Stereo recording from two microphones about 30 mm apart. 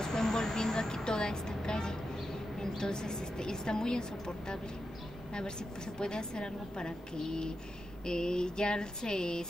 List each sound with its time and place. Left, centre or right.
0.0 s vehicle: centre
2.8 s a sound: left
5.9 s a woman's voice: left